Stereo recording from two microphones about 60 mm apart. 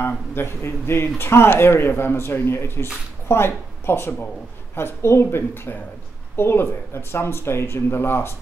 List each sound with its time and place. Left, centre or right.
0.0 s speech: left
5.5 s speech: left